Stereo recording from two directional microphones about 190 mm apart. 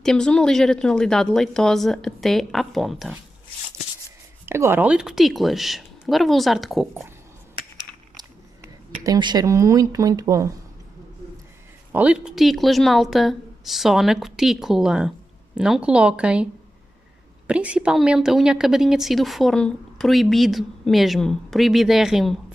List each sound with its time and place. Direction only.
0.0 s a woman's voice: 5° left (ahead or behind)
4.5 s a woman's voice: 10° right (ahead or behind)
9.0 s speech: 20° right (ahead or behind)
11.9 s a woman's voice: 5° right (ahead or behind)
17.5 s a woman's voice: 5° right (ahead or behind)